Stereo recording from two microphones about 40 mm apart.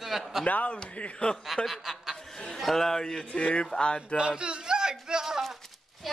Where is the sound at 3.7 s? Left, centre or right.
Left.